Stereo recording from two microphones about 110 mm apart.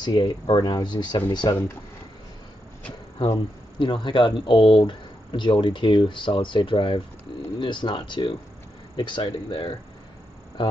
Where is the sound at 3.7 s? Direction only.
45° left (ahead or behind).